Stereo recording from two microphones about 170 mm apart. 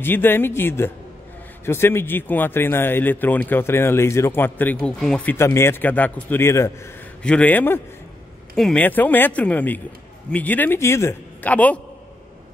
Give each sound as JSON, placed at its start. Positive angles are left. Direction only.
{"t": 0.0, "sound": "speech", "side_deg": 10}